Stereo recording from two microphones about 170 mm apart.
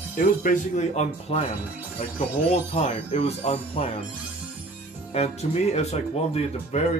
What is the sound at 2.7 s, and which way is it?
Speech, 40° left (ahead or behind).